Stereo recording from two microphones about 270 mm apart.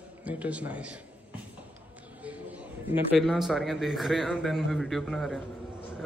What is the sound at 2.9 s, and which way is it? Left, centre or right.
A man's voice, centre.